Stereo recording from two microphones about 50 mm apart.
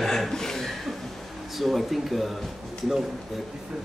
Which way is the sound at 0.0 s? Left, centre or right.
Centre.